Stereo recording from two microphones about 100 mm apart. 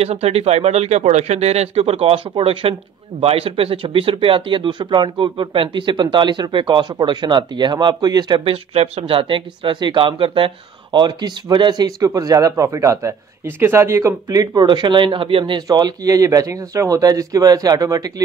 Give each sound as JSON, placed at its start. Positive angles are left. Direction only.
{"t": 0.0, "sound": "speech", "side_deg": -90}
{"t": 8.5, "sound": "speech", "side_deg": -85}